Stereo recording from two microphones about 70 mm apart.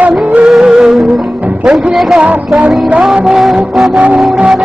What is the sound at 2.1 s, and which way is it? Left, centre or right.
Music, centre.